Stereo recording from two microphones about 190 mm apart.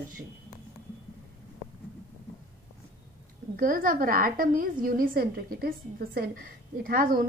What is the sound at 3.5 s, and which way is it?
A woman's voice, 45° right (ahead or behind).